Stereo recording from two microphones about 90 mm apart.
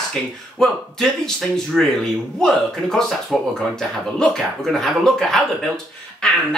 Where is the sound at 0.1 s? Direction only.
5° left (ahead or behind).